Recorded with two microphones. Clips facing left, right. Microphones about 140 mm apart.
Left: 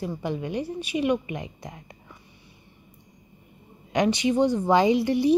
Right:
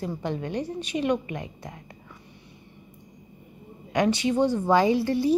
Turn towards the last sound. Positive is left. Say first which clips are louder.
# left 2 dB
turn(degrees=20)  # may be behind; listen again after turning